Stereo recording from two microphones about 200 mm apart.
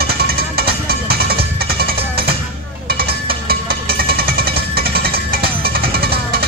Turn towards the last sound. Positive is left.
turn(degrees=-50)  # may be behind; listen again after turning